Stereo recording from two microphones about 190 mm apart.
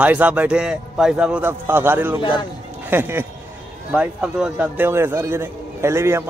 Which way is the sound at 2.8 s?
10° right (ahead or behind).